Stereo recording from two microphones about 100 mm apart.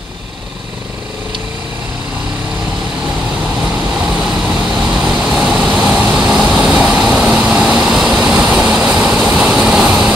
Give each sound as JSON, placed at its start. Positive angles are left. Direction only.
{"t": 4.2, "sound": "vehicle", "side_deg": -5}